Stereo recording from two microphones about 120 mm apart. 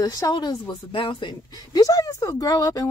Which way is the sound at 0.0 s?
30° left (ahead or behind).